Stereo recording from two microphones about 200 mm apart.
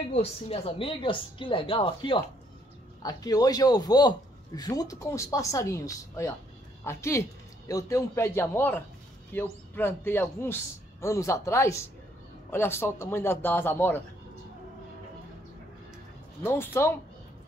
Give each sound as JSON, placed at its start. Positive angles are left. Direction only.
{"t": 0.1, "sound": "a man's voice", "side_deg": 30}
{"t": 16.4, "sound": "a man's voice", "side_deg": 10}